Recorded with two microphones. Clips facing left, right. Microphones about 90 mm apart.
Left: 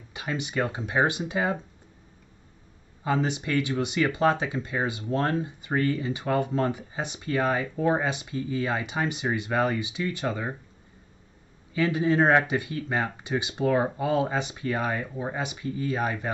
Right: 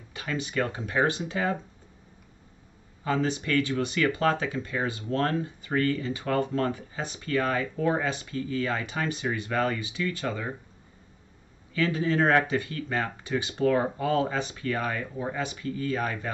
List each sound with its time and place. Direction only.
0.1 s speech: 20° left (ahead or behind)
3.0 s speech: 20° left (ahead or behind)
11.7 s speech: 20° left (ahead or behind)